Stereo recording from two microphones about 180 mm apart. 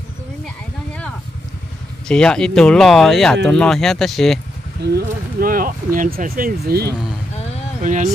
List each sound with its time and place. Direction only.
2.0 s speech: 5° left (ahead or behind)
4.9 s speech: 50° right (ahead or behind)
7.8 s speech: 45° right (ahead or behind)